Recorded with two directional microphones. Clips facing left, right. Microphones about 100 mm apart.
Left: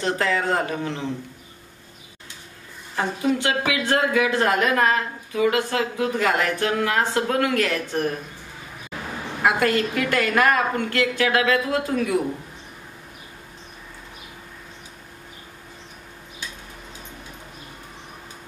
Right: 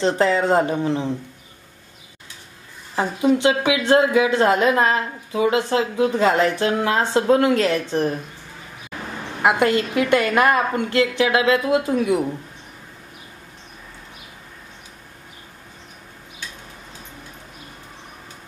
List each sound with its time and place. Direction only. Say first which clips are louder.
0.0 s speech: right 5 dB; 25° right (ahead or behind)
3.0 s speech: right 5 dB; 25° right (ahead or behind)
9.4 s speech: right 3 dB; 20° right (ahead or behind)